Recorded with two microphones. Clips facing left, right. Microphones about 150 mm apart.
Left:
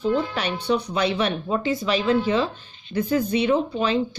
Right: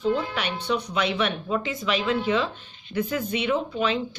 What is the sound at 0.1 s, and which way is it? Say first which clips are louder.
A woman's voice: left 3 dB; 35° left (ahead or behind).